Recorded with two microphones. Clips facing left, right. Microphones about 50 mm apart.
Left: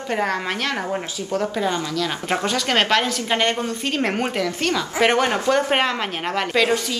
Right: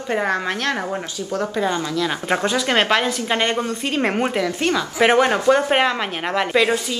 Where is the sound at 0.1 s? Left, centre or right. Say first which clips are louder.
Right 2 dB; centre.